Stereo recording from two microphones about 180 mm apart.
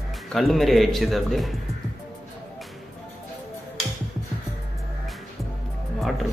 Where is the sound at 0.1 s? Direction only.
Centre (ahead or behind).